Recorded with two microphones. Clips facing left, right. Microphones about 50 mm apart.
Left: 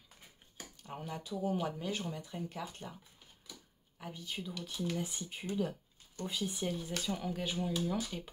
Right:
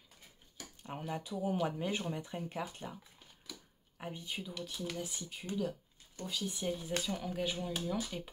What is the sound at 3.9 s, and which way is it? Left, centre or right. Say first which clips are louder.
Speech: right 2 dB; right.